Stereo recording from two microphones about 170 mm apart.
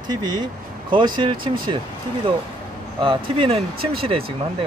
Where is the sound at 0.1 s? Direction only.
25° right (ahead or behind).